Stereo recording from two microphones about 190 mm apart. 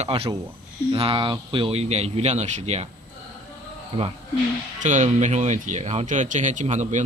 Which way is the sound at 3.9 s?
30° right (ahead or behind).